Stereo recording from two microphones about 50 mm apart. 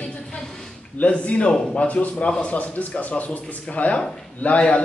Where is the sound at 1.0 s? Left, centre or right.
Left.